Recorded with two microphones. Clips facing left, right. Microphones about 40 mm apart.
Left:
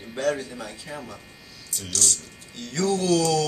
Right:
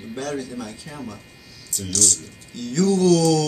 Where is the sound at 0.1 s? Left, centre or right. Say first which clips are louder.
Left 2 dB; centre.